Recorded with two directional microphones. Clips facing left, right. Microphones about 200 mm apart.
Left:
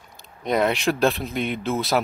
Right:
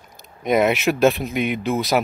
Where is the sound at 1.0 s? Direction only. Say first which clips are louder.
Right 4 dB; 15° right (ahead or behind).